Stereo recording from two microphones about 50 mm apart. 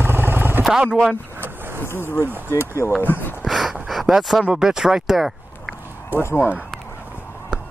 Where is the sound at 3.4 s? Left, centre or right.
Centre.